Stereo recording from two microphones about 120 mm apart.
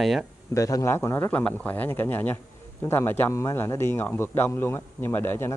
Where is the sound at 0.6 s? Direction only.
30° left (ahead or behind).